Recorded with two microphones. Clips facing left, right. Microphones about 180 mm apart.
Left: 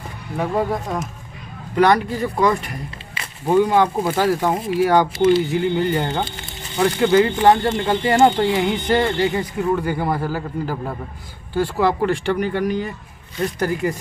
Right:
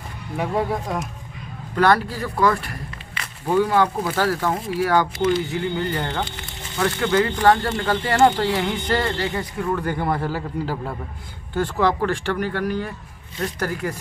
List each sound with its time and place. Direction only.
0.4 s a man's voice: centre (ahead or behind)
1.8 s speech: 15° left (ahead or behind)
9.9 s a man's voice: centre (ahead or behind); by 13.9 s 20° left (ahead or behind)